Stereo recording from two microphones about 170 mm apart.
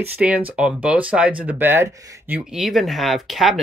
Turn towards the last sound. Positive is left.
turn(degrees=0)  # may be behind; listen again after turning